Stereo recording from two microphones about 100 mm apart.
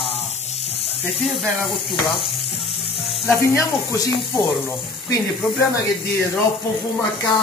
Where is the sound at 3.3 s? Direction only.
30° left (ahead or behind).